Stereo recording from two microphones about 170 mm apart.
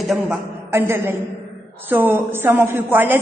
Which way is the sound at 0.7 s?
15° right (ahead or behind).